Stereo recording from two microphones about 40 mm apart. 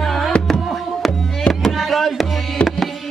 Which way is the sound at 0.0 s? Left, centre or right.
Centre.